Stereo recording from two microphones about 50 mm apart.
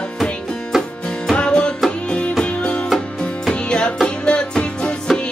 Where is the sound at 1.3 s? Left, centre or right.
Centre.